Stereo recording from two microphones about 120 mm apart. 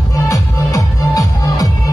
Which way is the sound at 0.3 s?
30° left (ahead or behind).